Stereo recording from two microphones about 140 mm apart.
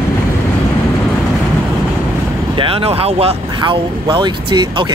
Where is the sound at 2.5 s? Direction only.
40° right (ahead or behind).